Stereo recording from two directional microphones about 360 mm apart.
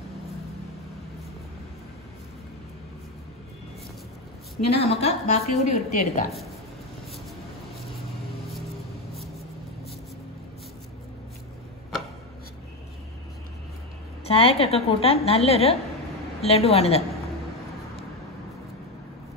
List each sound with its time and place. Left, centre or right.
4.6 s a woman's voice: centre
14.2 s a woman's voice: centre